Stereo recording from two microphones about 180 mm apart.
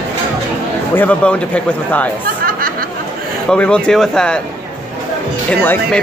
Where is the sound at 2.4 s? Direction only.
55° right (ahead or behind).